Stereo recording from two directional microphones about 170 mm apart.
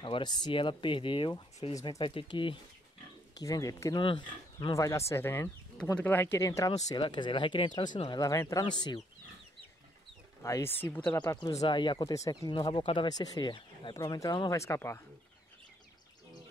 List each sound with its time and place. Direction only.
0.0 s speech: 30° left (ahead or behind)
10.4 s speech: 15° left (ahead or behind)
11.1 s speech: 25° left (ahead or behind)